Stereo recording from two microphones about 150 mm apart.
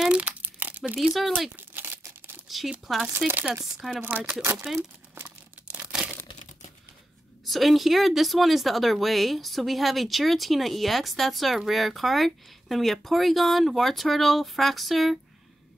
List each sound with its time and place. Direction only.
0.0 s crumpling: 10° right (ahead or behind)
0.9 s speech: centre (ahead or behind)
1.6 s crumpling: 15° right (ahead or behind)
2.4 s speech: centre (ahead or behind)
3.3 s chopping: 15° right (ahead or behind)
3.6 s speech: 5° right (ahead or behind)
4.4 s chopping: 15° right (ahead or behind)
4.7 s crumpling: 15° right (ahead or behind)
7.4 s speech: centre (ahead or behind)